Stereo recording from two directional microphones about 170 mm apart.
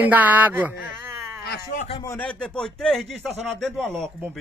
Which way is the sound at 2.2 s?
5° left (ahead or behind).